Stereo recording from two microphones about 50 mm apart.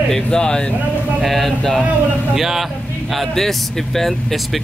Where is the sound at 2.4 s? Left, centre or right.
Centre.